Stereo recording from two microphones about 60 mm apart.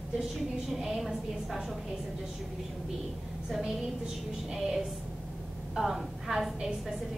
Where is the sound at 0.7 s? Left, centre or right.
Centre.